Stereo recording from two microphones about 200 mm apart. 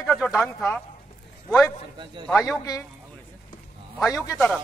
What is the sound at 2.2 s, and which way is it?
Speech, 5° left (ahead or behind).